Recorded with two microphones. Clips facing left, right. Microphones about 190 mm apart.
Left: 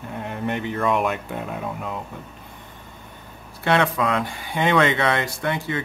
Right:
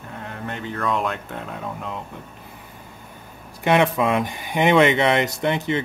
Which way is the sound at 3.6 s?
15° right (ahead or behind).